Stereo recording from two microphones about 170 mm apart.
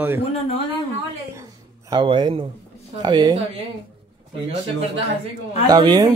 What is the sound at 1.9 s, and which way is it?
Speech, 25° right (ahead or behind).